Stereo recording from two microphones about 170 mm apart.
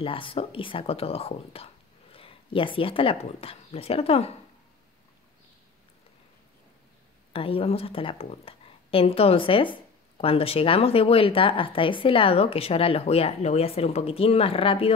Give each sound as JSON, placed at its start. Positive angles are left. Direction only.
{"t": 0.0, "sound": "a woman's voice", "side_deg": 30}
{"t": 7.3, "sound": "a woman's voice", "side_deg": 35}